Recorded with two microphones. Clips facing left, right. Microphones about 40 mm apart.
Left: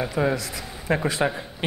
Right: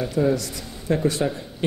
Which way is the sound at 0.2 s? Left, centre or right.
Left.